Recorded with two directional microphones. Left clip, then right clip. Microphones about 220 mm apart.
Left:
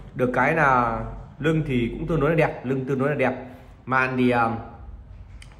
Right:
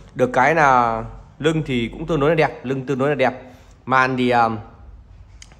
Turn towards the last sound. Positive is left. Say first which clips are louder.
# right 5 dB
turn(degrees=-15)  # may be behind; listen again after turning